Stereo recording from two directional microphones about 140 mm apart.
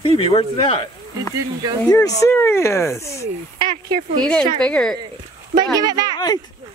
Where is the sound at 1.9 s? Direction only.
25° left (ahead or behind).